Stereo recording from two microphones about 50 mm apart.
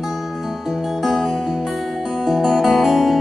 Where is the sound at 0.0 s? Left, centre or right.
Centre.